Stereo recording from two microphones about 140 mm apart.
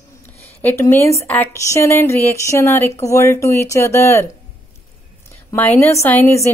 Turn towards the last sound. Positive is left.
turn(degrees=15)  # may be behind; listen again after turning